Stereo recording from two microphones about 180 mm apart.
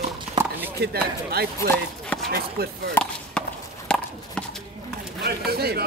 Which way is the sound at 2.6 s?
60° right (ahead or behind).